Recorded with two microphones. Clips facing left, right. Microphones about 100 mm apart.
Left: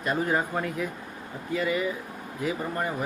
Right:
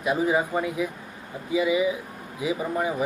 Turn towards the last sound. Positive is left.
turn(degrees=-5)  # may be behind; listen again after turning